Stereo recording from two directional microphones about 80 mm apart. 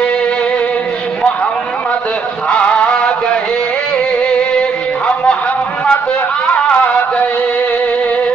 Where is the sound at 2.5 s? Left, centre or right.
Centre.